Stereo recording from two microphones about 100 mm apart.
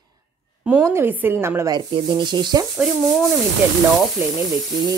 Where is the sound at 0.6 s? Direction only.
15° right (ahead or behind).